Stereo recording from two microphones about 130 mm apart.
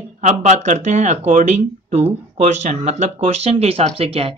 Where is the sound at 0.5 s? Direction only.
65° right (ahead or behind).